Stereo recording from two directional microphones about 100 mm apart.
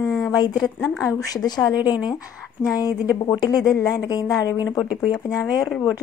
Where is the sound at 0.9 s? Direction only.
35° left (ahead or behind).